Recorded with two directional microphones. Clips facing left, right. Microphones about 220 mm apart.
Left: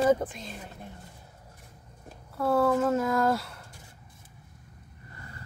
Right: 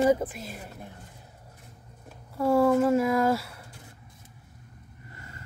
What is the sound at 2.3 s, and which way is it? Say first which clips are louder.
Speech: right 3 dB; 10° right (ahead or behind).